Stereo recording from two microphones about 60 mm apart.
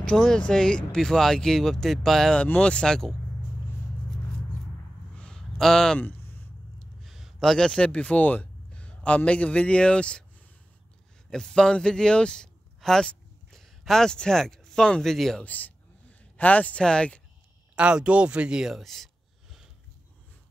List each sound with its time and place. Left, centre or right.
0.0 s speech: centre
2.3 s speech: centre
5.1 s a sound: centre
5.6 s speech: centre
5.9 s a sound: left
6.8 s speech: centre
11.2 s a man's voice: centre
15.4 s speech: left
17.7 s speech: centre